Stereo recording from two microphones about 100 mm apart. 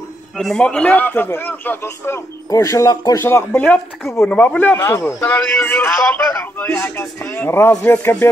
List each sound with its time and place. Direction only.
0.4 s a man's voice: 5° left (ahead or behind)
6.7 s a man's voice: 25° left (ahead or behind)